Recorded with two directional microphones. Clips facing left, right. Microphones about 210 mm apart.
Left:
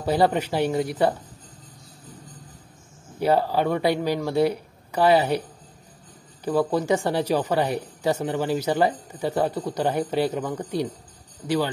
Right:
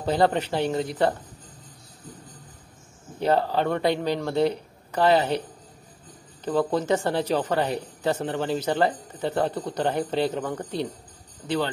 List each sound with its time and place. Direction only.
0.0 s speech: 10° left (ahead or behind)
3.2 s speech: 10° left (ahead or behind)
6.4 s speech: 10° left (ahead or behind)